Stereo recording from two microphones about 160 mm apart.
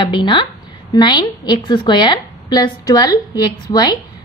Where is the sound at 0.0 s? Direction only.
30° left (ahead or behind).